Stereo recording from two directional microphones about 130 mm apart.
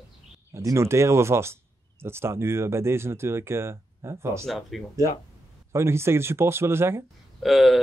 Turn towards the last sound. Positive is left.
turn(degrees=0)  # may be behind; listen again after turning